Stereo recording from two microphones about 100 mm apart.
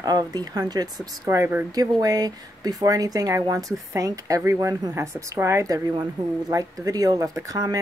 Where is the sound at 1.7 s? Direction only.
40° right (ahead or behind).